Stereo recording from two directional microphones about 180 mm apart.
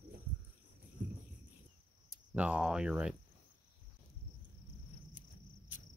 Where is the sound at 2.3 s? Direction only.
5° right (ahead or behind).